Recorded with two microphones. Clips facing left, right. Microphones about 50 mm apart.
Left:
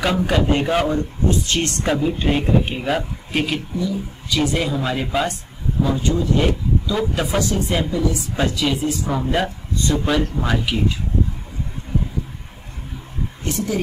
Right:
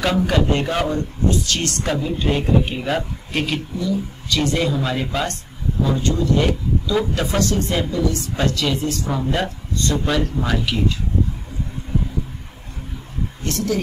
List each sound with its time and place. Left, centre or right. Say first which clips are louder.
0.0 s a woman's voice: even; centre; by 1.9 s left
1.9 s a woman's voice: left 2 dB; centre
13.5 s a woman's voice: right 1 dB; centre